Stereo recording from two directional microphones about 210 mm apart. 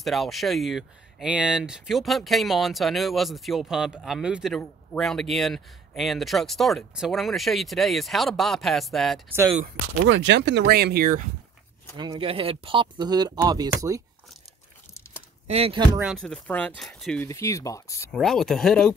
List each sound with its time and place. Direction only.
0.0 s speech: centre (ahead or behind)
10.0 s speech: 60° right (ahead or behind); by 11.2 s 45° right (ahead or behind)
12.0 s speech: 25° right (ahead or behind)
15.4 s speech: 30° right (ahead or behind)
16.0 s speech: centre (ahead or behind)
17.3 s speech: 15° left (ahead or behind)
18.1 s speech: centre (ahead or behind)